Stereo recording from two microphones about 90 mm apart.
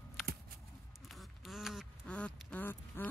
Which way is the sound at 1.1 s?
Centre (ahead or behind).